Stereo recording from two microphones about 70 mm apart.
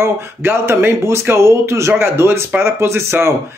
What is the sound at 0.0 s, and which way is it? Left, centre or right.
Speech, right.